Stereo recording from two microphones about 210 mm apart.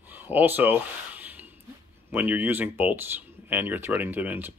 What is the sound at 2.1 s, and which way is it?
Speech, 10° right (ahead or behind).